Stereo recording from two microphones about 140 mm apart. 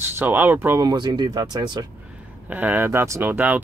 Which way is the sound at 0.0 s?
15° right (ahead or behind).